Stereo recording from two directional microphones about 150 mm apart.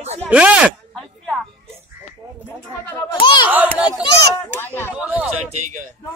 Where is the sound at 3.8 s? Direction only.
5° right (ahead or behind).